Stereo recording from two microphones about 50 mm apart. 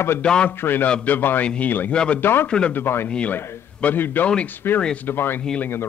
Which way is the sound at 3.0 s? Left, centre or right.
Left.